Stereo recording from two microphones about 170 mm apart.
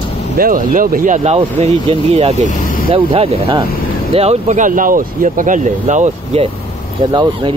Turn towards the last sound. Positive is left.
turn(degrees=-25)  # may be behind; listen again after turning